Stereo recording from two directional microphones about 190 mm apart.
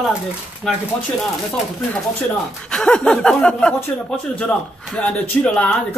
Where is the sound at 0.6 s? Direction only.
Centre (ahead or behind).